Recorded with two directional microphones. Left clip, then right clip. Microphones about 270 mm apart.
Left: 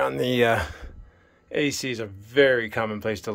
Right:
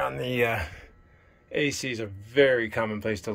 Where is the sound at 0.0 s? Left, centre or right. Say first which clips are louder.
Left 5 dB; left.